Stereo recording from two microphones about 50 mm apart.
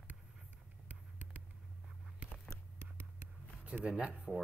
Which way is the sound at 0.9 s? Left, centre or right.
Right.